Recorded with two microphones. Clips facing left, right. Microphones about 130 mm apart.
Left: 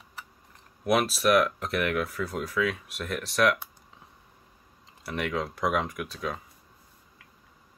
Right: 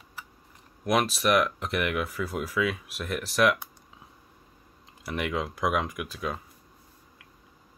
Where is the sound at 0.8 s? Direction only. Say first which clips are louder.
Left 1 dB; 5° left (ahead or behind).